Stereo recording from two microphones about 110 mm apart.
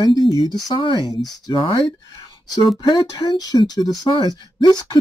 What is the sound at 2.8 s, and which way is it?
Speech, 40° left (ahead or behind).